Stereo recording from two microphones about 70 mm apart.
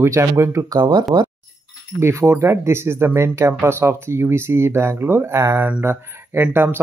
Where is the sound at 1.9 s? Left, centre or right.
Right.